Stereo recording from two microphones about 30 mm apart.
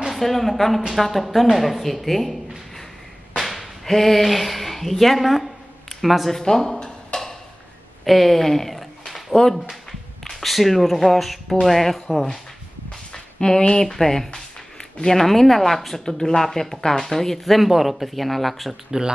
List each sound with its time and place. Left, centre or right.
0.1 s a woman's voice: centre
3.3 s a sound: centre
3.8 s a woman's voice: centre
6.3 s speech: centre
7.1 s a sound: left
8.0 s a woman's voice: centre
9.1 s a sound: centre
10.2 s a woman's voice: centre
13.1 s a sound: left
13.8 s speech: centre
17.6 s a woman's voice: centre
18.9 s speech: centre